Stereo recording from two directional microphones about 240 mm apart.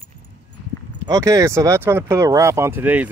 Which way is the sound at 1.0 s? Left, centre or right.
Centre.